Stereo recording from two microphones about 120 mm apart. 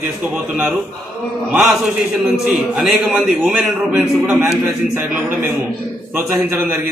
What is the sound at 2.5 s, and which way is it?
A man's voice, 5° right (ahead or behind).